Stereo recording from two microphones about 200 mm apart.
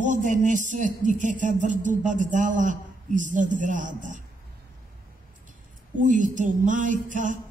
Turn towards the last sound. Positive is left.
turn(degrees=-40)  # may be behind; listen again after turning